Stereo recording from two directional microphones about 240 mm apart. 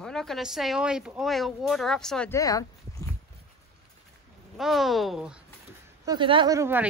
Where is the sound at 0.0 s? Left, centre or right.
Centre.